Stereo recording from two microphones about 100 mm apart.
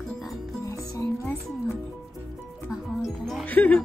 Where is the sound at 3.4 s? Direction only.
15° left (ahead or behind).